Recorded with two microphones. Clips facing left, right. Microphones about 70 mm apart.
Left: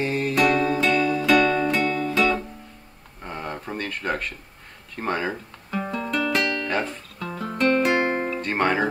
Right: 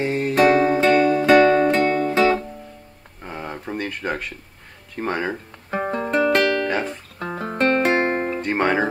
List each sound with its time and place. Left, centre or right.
0.0 s music: right
0.3 s music: right
3.2 s a sound: centre
4.9 s speech: centre
5.7 s music: right
6.3 s music: right
6.7 s music: centre
7.2 s music: right; by 8.8 s centre